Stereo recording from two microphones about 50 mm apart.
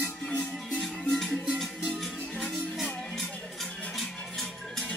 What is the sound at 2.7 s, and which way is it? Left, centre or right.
Music, centre.